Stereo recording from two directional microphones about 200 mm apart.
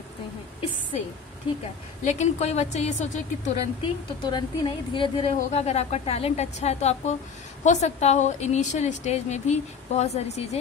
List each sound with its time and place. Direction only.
2.0 s speech: 35° left (ahead or behind)
3.8 s speech: 20° left (ahead or behind)